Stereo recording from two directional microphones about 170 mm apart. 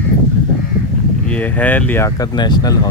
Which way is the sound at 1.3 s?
10° left (ahead or behind).